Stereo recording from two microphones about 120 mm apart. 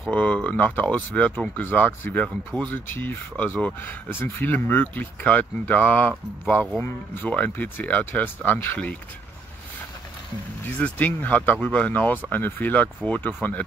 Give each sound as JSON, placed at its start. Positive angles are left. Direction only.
{"t": 0.1, "sound": "speech", "side_deg": 10}
{"t": 10.6, "sound": "speech", "side_deg": 15}